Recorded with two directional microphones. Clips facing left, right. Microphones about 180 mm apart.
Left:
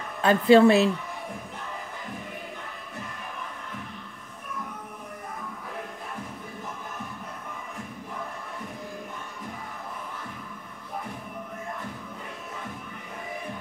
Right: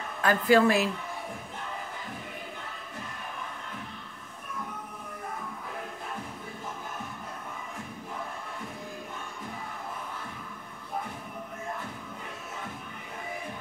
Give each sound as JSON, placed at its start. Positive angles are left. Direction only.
{"t": 0.2, "sound": "a woman's voice", "side_deg": 25}